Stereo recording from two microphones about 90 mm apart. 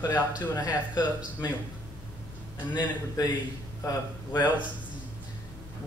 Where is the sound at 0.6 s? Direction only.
50° left (ahead or behind).